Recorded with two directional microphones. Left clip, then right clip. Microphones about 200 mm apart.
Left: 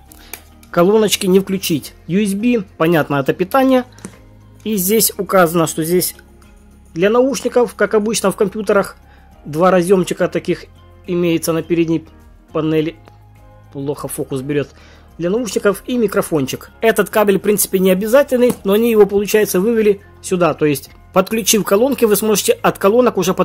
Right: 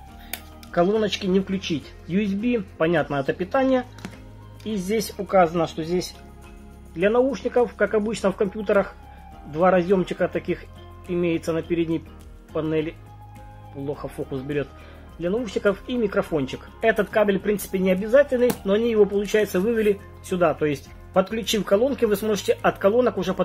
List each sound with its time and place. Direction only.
0.7 s speech: 50° left (ahead or behind)